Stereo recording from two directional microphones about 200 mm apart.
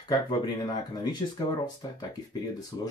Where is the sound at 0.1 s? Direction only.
20° left (ahead or behind).